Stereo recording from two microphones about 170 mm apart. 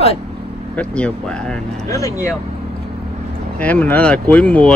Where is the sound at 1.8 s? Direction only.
20° left (ahead or behind).